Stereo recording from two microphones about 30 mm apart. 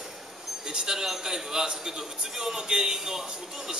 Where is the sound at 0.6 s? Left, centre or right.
Right.